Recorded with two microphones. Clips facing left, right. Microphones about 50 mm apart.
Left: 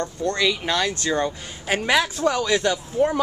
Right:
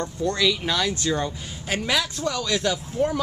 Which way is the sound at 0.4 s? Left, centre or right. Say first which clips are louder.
Left 2 dB; centre.